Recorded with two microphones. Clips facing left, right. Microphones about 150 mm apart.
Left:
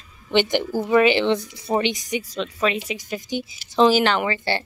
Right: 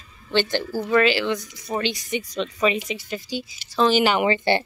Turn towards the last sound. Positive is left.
turn(degrees=-20)  # may be behind; listen again after turning